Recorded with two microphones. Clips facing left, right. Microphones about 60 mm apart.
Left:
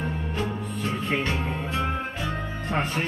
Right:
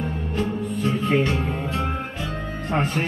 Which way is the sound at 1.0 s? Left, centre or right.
Centre.